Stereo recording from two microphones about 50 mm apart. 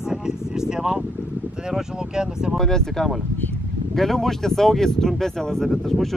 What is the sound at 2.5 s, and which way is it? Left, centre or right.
Speech, centre.